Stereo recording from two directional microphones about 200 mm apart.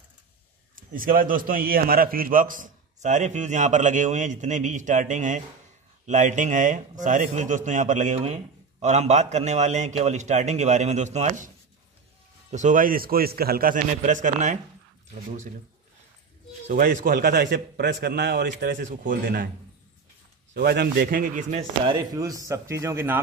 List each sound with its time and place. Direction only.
0.9 s a man's voice: 45° right (ahead or behind)
16.6 s a man's voice: 40° right (ahead or behind); by 18.8 s 60° right (ahead or behind)
18.8 s a man's voice: 40° right (ahead or behind)
20.5 s a man's voice: 50° right (ahead or behind)
21.4 s a man's voice: 35° right (ahead or behind)
21.8 s speech: 20° right (ahead or behind)